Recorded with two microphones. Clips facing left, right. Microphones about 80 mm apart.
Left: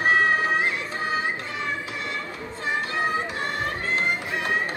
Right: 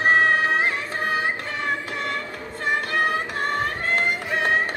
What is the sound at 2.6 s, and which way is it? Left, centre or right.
Music, right.